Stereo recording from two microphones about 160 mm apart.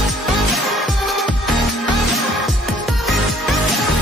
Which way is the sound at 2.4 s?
Centre (ahead or behind).